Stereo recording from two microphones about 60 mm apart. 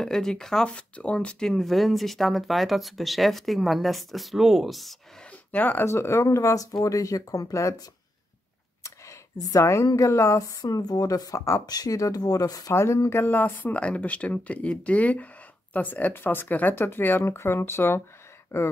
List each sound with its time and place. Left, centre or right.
0.0 s speech: centre
0.7 s speech: left
1.5 s speech: centre
5.5 s speech: left
5.9 s speech: left
8.8 s speech: left
12.7 s speech: left
13.3 s speech: left
18.5 s speech: left